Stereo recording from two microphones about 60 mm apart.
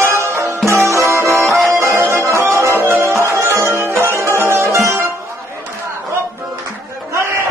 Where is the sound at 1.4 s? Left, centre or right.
Centre.